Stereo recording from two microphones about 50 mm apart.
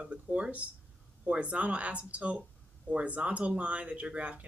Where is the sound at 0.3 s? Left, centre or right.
Right.